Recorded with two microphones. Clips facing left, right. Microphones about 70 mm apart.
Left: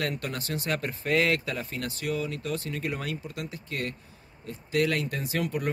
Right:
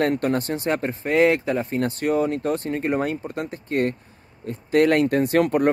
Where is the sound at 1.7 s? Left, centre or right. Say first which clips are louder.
Right 9 dB; right.